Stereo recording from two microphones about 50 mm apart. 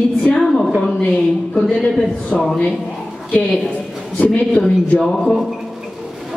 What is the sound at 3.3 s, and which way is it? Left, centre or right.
Speech, centre.